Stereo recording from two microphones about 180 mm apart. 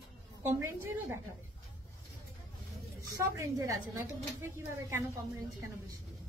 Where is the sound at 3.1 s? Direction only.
15° right (ahead or behind).